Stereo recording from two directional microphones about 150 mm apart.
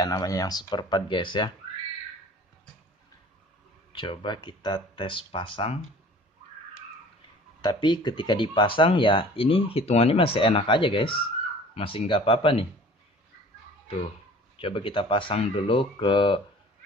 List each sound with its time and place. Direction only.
0.0 s speech: 25° left (ahead or behind)
3.9 s speech: 35° left (ahead or behind)
7.6 s speech: 30° left (ahead or behind)
14.6 s speech: 35° left (ahead or behind)